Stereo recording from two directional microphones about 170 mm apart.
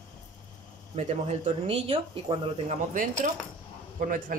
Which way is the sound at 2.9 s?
50° right (ahead or behind).